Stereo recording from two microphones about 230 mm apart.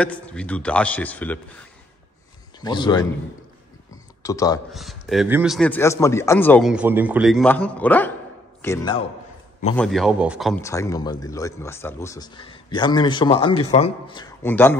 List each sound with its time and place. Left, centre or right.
0.0 s a man's voice: centre
2.6 s speech: centre
4.2 s speech: centre
4.7 s a man's voice: centre
6.7 s a man's voice: centre
9.8 s a man's voice: centre
10.5 s speech: centre